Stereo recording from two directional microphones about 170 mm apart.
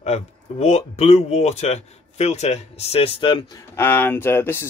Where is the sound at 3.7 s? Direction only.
15° left (ahead or behind).